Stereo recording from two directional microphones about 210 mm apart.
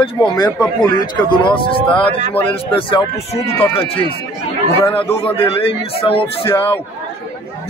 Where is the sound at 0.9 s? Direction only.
20° left (ahead or behind).